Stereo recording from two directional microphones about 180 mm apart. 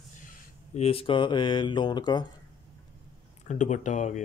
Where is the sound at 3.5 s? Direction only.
40° left (ahead or behind).